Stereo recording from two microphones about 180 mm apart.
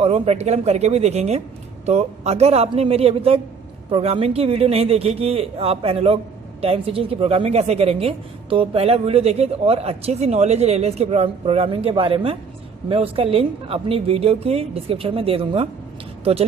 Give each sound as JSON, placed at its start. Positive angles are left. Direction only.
{"t": 0.0, "sound": "a woman's voice", "side_deg": -35}